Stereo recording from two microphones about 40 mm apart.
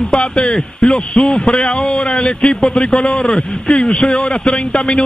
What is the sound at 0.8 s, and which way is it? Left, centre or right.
Speech, centre.